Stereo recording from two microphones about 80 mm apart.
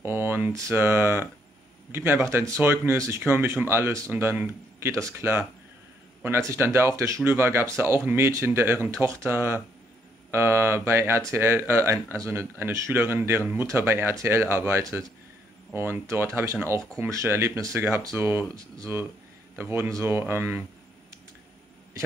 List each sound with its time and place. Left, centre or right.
0.0 s speech: right
12.3 s speech: right
15.7 s speech: right
19.5 s speech: right